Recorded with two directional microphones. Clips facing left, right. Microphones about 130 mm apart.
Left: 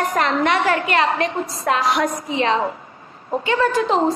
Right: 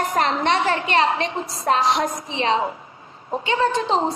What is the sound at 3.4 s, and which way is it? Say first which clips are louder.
Speech: left 2 dB; 25° right (ahead or behind).